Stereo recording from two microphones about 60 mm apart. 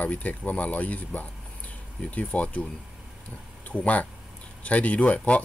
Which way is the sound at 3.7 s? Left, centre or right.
Left.